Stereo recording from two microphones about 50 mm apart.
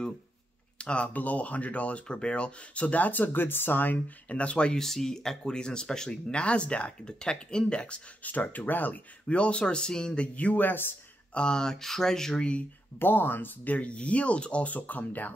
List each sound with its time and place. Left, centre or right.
0.7 s speech: left
4.7 s speech: centre; by 9.0 s left
9.3 s speech: left
11.3 s speech: centre
13.0 s speech: left
13.7 s speech: left